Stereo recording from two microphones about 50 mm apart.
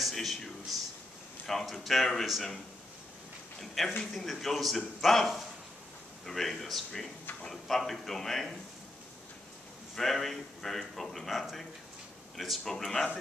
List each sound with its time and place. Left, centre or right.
0.0 s speech: centre
9.9 s speech: centre